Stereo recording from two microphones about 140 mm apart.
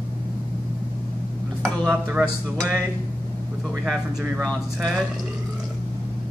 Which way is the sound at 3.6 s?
Centre (ahead or behind).